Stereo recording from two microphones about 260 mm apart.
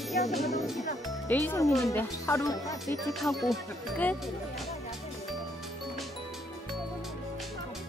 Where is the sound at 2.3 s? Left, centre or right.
Centre.